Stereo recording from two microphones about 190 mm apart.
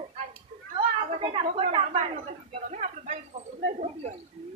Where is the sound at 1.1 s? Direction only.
25° right (ahead or behind).